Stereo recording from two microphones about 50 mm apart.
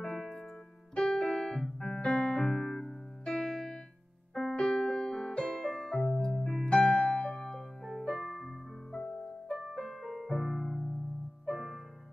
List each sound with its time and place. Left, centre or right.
0.0 s music: centre
0.9 s keyboard: centre
2.0 s music: centre
2.4 s keyboard: centre
4.3 s music: centre
5.3 s keyboard: centre
6.6 s piano: centre
9.8 s music: centre